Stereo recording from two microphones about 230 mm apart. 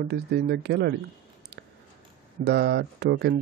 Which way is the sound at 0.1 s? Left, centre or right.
Right.